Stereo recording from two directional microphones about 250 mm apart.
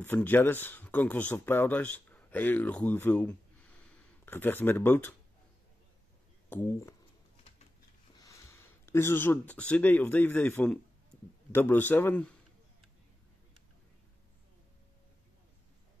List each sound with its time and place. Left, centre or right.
0.0 s speech: centre
6.5 s a man's voice: centre
8.2 s a man's voice: centre